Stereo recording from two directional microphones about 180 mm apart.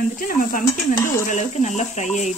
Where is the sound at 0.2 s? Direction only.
50° left (ahead or behind).